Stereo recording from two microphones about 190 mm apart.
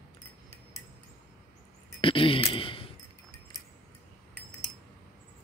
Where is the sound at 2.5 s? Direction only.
30° left (ahead or behind).